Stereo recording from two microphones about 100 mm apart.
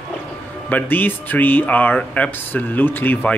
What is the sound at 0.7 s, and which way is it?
Speech, 15° left (ahead or behind).